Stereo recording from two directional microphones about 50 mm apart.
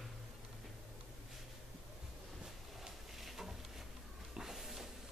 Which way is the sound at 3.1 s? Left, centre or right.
Centre.